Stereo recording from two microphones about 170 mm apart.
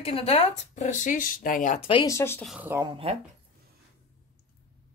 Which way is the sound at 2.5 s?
10° right (ahead or behind).